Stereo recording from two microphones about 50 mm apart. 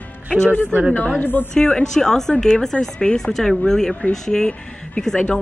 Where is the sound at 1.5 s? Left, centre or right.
Centre.